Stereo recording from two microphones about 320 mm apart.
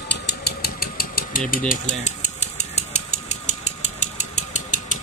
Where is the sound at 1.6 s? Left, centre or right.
Left.